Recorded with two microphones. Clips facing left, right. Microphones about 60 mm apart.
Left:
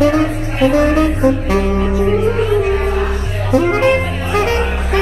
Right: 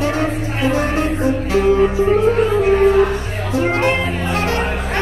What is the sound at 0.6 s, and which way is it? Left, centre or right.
Music, left.